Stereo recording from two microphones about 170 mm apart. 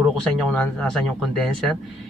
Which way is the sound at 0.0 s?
Centre (ahead or behind).